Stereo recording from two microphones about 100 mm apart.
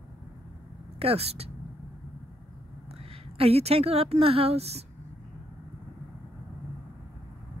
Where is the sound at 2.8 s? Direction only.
80° right.